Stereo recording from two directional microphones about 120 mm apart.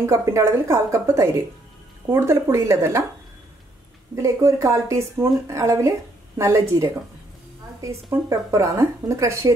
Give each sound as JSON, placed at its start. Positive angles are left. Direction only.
{"t": 0.0, "sound": "a woman's voice", "side_deg": -25}
{"t": 4.1, "sound": "a woman's voice", "side_deg": -25}
{"t": 7.8, "sound": "a woman's voice", "side_deg": -25}